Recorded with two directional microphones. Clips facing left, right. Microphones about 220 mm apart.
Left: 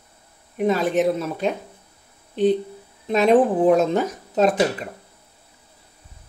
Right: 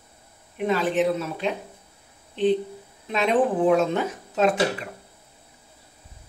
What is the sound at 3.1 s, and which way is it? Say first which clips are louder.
Speech: left 5 dB; 40° left (ahead or behind).